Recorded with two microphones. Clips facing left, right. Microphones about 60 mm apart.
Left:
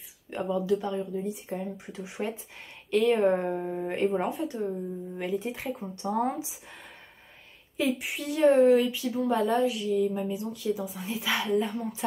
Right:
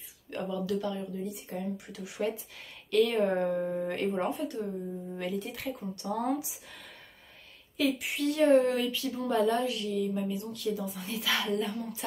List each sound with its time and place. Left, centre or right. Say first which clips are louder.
0.3 s a sound: left 4 dB; centre
0.7 s speech: left 4 dB; left
1.1 s speech: left 5 dB; centre
1.9 s speech: right 1 dB; left
4.1 s speech: left 2 dB; centre
5.2 s speech: left 4 dB; left
5.5 s speech: left 3 dB; centre
5.8 s speech: left 5 dB; left
7.7 s speech: left 1 dB; left
8.2 s speech: right 1 dB; centre
8.5 s speech: left 6 dB; left
8.8 s speech: left 4 dB; centre
10.5 s speech: left 2 dB; centre